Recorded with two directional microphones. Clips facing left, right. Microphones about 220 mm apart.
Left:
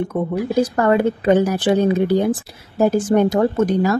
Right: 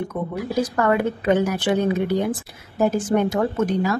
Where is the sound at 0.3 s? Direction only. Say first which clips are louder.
Left 5 dB; 30° left (ahead or behind).